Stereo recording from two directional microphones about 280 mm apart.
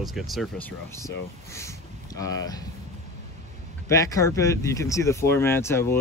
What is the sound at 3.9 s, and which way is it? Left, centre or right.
Speech, centre.